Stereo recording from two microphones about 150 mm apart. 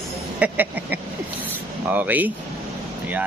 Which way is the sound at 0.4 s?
10° right (ahead or behind).